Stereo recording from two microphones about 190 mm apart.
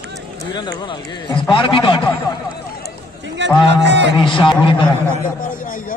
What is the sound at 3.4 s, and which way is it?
Speech, 70° right (ahead or behind).